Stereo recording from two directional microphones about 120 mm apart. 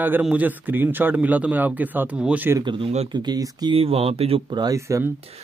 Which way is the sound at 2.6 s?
40° right (ahead or behind).